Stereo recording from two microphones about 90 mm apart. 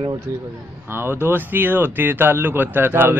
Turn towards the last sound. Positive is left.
turn(degrees=-25)  # may be behind; listen again after turning